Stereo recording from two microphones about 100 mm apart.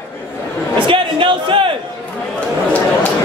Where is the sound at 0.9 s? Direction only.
60° right (ahead or behind).